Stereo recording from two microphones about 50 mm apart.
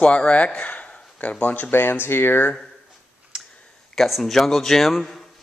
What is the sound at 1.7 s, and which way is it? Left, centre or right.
Speech, left.